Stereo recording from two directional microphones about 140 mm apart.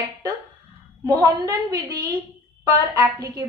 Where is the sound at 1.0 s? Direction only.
25° right (ahead or behind).